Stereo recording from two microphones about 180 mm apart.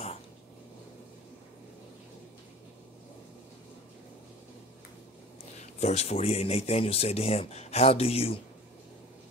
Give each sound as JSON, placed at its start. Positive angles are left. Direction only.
{"t": 5.6, "sound": "a man's voice", "side_deg": 40}